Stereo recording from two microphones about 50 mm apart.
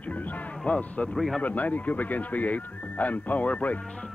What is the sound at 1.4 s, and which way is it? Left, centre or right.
Speech, left.